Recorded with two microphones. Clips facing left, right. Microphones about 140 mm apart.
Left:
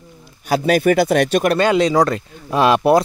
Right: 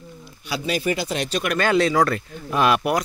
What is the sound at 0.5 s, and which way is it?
Speech, 55° left (ahead or behind).